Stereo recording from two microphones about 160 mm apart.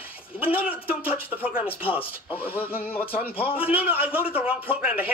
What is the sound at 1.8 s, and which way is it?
Speech, 35° left (ahead or behind).